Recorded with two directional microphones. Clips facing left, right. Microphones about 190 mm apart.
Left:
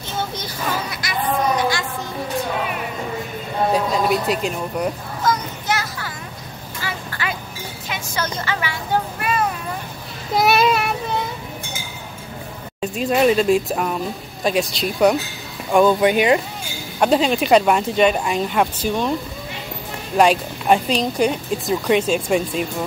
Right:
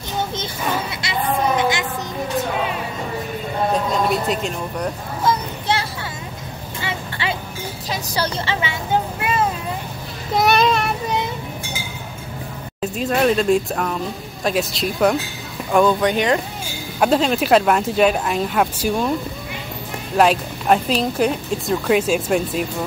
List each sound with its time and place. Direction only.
0.2 s a sound: 25° right (ahead or behind)
3.7 s speech: centre (ahead or behind)
5.2 s a sound: 30° right (ahead or behind)
7.9 s speech: 35° right (ahead or behind)
10.3 s child singing: 5° left (ahead or behind)
12.8 s speech: centre (ahead or behind)
20.2 s speech: centre (ahead or behind)